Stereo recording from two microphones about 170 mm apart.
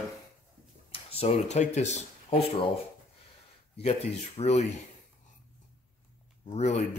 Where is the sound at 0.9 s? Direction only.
35° left (ahead or behind).